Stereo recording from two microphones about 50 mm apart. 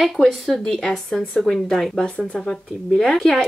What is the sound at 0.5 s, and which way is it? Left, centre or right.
Speech, centre.